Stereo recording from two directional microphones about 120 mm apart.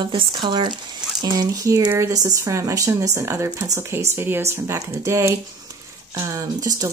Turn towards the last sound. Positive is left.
turn(degrees=-25)  # may be behind; listen again after turning